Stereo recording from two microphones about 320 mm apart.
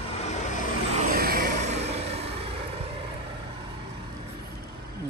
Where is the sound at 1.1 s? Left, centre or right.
Right.